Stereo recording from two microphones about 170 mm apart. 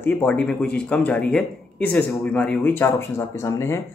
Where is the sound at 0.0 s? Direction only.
10° left (ahead or behind).